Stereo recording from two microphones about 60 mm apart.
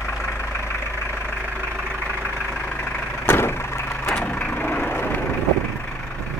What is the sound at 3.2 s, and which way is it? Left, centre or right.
Vehicle, left.